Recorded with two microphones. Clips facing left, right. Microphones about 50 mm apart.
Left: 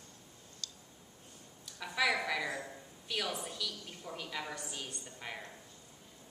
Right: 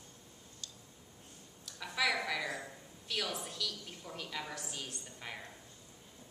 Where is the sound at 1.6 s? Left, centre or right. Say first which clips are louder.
Left 2 dB; centre.